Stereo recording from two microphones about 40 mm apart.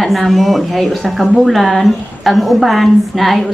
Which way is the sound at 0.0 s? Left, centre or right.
Centre.